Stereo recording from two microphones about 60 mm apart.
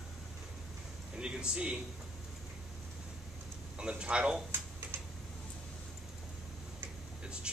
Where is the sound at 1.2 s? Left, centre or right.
Centre.